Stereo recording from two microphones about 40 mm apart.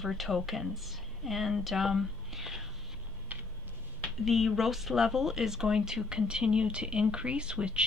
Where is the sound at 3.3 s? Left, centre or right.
Right.